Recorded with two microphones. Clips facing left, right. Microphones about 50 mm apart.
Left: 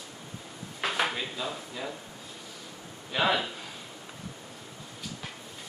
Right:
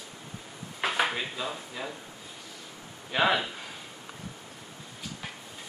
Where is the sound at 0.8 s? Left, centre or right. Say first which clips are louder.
Right 1 dB; centre.